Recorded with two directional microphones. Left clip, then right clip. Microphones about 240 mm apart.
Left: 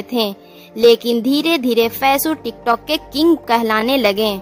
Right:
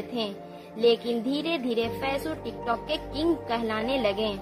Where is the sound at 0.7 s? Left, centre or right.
Left.